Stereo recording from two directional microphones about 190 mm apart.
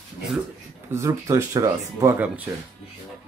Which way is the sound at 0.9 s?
15° right (ahead or behind).